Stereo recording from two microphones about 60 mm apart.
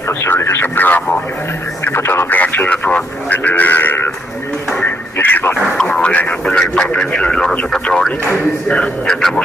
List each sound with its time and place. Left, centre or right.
0.2 s radio: left
1.9 s speech: left
2.2 s speech: left
2.9 s a sound: left
4.8 s radio: left
5.8 s radio: centre
8.3 s speech: left